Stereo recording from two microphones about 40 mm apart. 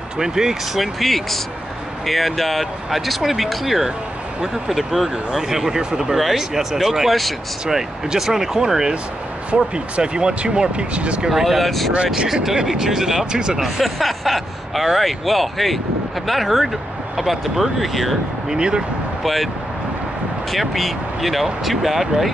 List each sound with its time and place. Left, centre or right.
0.2 s speech: centre
0.7 s speech: centre
6.1 s speech: centre; by 11.2 s right
11.2 s speech: centre
12.6 s speech: centre
13.6 s speech: centre
18.5 s speech: centre
19.2 s speech: centre
20.5 s speech: centre